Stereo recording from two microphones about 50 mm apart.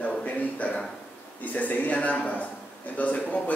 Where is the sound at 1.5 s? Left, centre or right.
Left.